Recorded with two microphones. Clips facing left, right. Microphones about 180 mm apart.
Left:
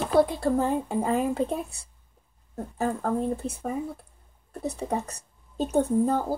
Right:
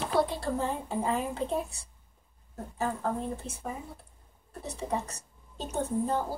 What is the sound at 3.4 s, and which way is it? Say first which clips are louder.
Speech: left 9 dB; 50° left (ahead or behind).